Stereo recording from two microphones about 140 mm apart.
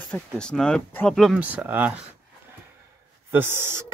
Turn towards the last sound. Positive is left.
turn(degrees=-15)  # may be behind; listen again after turning